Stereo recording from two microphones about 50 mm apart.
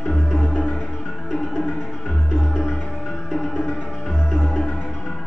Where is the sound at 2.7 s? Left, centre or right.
Centre.